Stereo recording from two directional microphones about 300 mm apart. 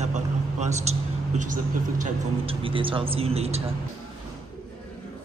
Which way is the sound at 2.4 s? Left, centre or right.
Centre.